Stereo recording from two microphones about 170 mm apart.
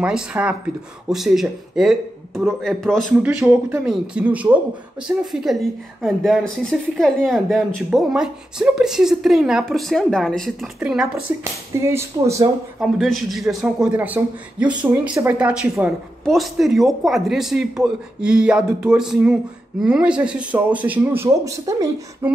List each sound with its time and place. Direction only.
0.0 s a woman's voice: 5° right (ahead or behind)
3.2 s a woman's voice: 5° right (ahead or behind)
12.8 s a woman's voice: centre (ahead or behind); by 22.3 s 20° right (ahead or behind)